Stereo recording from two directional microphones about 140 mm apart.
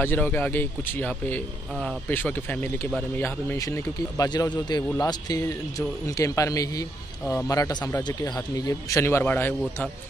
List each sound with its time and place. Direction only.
0.0 s speech: 15° left (ahead or behind)